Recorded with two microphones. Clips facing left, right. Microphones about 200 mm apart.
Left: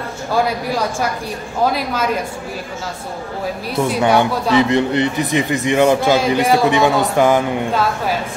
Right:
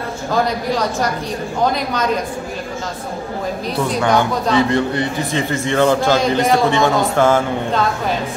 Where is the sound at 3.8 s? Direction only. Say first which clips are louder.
Left 2 dB; 5° left (ahead or behind).